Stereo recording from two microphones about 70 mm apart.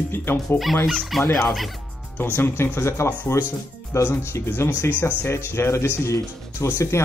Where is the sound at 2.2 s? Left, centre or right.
Left.